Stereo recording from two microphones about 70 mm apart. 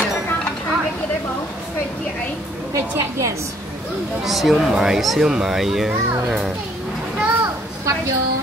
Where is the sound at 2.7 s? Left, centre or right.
Right.